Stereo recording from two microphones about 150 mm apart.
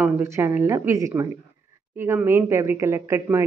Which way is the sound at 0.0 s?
15° right (ahead or behind).